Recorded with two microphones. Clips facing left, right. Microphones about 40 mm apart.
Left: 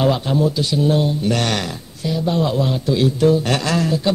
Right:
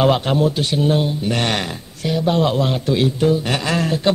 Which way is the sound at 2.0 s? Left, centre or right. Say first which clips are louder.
Right 2 dB; right.